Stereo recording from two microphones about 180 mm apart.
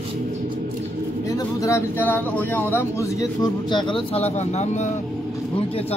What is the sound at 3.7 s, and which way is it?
Speech, 30° left (ahead or behind).